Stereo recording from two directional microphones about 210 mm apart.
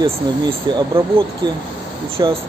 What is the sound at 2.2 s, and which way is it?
Speech, 20° right (ahead or behind).